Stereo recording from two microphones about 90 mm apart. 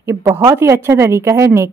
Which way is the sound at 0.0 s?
35° right (ahead or behind).